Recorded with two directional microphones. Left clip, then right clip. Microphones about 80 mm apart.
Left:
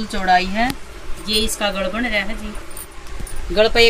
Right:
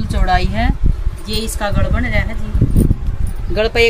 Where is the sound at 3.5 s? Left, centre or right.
Right.